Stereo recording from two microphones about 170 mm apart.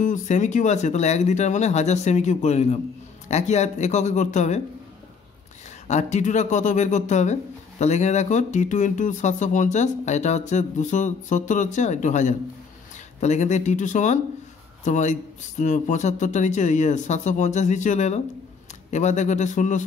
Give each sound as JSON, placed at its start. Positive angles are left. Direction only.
{"t": 0.0, "sound": "speech", "side_deg": 45}
{"t": 5.9, "sound": "speech", "side_deg": 45}